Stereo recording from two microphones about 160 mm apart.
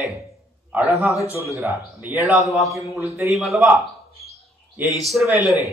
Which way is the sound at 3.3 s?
Centre (ahead or behind).